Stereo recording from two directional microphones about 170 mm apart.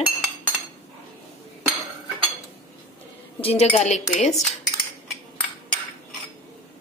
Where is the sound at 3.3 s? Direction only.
35° left (ahead or behind).